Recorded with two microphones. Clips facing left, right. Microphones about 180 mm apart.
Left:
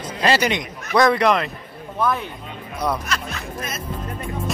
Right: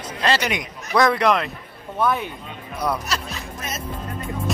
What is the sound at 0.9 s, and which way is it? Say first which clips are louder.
Speech: left 1 dB; centre (ahead or behind).